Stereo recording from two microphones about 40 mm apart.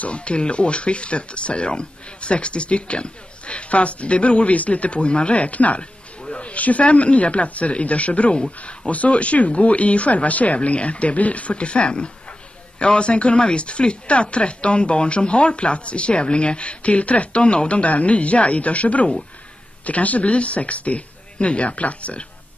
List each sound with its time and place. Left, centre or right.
0.0 s speech: left